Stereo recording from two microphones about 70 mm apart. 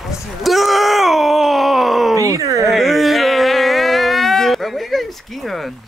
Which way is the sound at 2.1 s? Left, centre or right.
Right.